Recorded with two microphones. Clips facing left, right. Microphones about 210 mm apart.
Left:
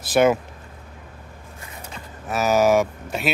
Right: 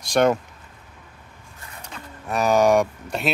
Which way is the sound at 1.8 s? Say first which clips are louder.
Even; 5° left (ahead or behind).